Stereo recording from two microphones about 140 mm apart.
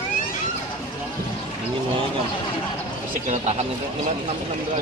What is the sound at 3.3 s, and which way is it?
Speech, 55° right (ahead or behind).